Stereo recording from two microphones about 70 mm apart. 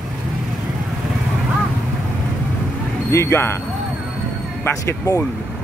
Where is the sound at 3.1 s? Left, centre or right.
Left.